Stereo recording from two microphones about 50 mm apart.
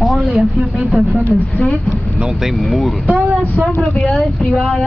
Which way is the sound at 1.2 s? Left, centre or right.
Left.